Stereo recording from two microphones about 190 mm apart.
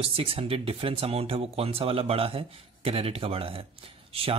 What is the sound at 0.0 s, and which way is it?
Speech, 30° right (ahead or behind).